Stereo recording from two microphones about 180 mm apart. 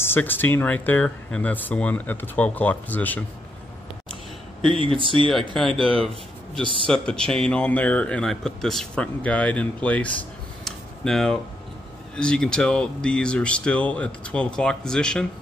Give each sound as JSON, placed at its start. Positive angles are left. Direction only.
{"t": 0.0, "sound": "speech", "side_deg": 10}
{"t": 4.7, "sound": "speech", "side_deg": -30}
{"t": 5.6, "sound": "speech", "side_deg": 0}
{"t": 10.6, "sound": "a sound", "side_deg": 5}
{"t": 12.2, "sound": "speech", "side_deg": 5}